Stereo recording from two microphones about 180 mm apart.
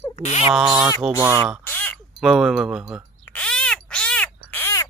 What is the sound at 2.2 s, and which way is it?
Speech, centre (ahead or behind).